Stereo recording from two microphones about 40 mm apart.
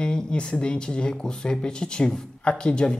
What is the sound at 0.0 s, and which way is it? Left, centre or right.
Speech, left.